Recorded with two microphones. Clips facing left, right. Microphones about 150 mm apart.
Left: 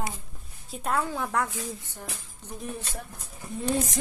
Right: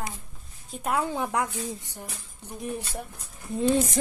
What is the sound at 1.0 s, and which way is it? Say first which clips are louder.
Speech: right 1 dB; 15° right (ahead or behind).